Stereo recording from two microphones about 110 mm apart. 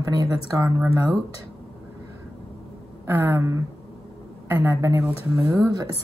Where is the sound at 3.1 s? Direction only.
20° right (ahead or behind).